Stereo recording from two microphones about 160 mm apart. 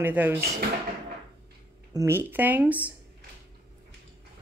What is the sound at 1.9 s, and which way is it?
A woman's voice, 15° right (ahead or behind).